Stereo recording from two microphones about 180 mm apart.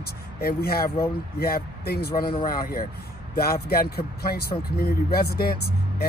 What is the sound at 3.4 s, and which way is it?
Speech, 60° left (ahead or behind).